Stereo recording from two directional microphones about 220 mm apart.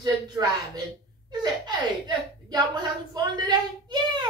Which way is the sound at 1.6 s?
20° right (ahead or behind).